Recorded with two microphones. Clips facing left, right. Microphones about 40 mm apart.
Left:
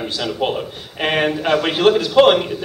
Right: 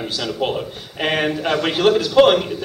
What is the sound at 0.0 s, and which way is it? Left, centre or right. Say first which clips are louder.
A man's voice: left 1 dB; centre.